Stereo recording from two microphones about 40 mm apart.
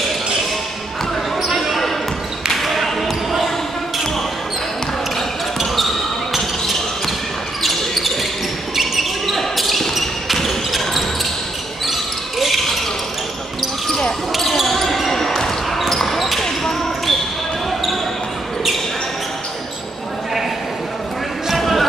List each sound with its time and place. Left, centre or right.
1.4 s basketball bounce: centre
5.6 s basketball bounce: centre
7.6 s basketball bounce: centre
13.8 s basketball bounce: centre
14.3 s basketball bounce: centre
21.5 s basketball bounce: centre